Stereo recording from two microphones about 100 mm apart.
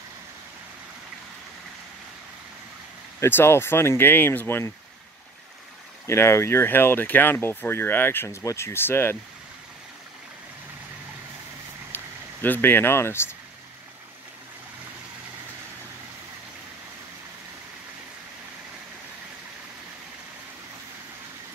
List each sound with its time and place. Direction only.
3.2 s speech: 25° left (ahead or behind)
6.0 s speech: 25° left (ahead or behind)
11.9 s speech: 20° left (ahead or behind)